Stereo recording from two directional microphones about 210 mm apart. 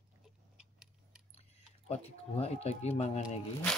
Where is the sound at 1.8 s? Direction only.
30° left (ahead or behind).